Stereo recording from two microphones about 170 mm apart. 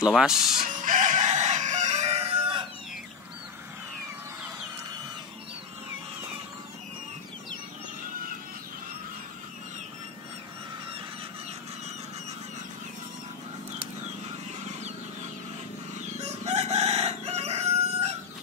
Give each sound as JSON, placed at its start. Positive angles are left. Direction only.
{"t": 0.0, "sound": "speech", "side_deg": -5}
{"t": 0.8, "sound": "chicken", "side_deg": -45}
{"t": 16.2, "sound": "crowing", "side_deg": -40}